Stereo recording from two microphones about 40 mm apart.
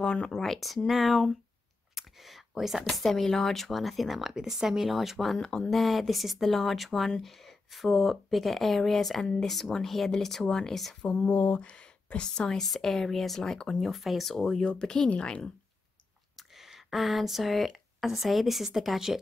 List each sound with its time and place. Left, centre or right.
0.0 s speech: left
0.3 s speech: centre
2.0 s a sound: centre
2.9 s speech: centre
5.8 s speech: centre
11.1 s a sound: left
11.6 s speech: left
16.3 s speech: centre